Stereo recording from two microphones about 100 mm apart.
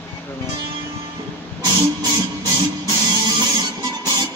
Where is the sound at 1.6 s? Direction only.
40° right (ahead or behind).